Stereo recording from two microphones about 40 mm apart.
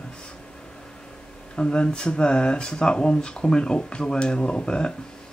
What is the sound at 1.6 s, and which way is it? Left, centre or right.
Speech, left.